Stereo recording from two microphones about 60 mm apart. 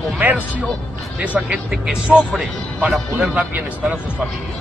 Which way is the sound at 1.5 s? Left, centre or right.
Centre.